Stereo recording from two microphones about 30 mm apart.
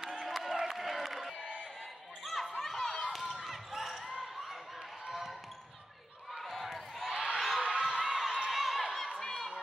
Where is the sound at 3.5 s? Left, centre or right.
Centre.